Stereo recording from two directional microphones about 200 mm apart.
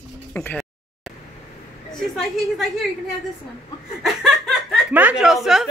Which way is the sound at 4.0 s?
Centre (ahead or behind).